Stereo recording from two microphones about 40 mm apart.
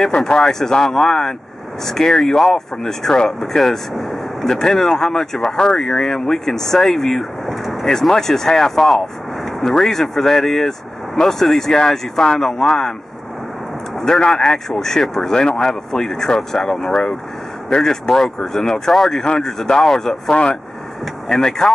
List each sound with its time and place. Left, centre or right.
0.4 s speech: centre
4.5 s speech: centre
14.0 s speech: centre
20.2 s speech: left
21.3 s speech: centre